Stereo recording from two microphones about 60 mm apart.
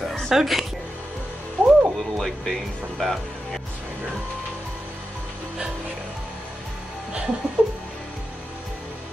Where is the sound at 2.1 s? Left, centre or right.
Centre.